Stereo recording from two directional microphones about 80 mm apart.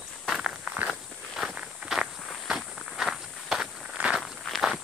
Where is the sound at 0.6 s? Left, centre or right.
Centre.